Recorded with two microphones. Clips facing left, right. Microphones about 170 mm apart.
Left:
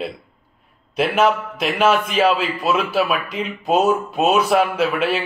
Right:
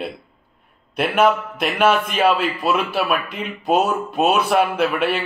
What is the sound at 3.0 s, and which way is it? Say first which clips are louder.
Speech: even; centre (ahead or behind).